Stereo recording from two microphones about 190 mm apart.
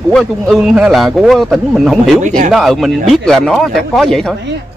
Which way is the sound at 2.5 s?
Centre (ahead or behind).